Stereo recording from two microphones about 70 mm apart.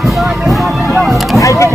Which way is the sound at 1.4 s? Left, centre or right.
Left.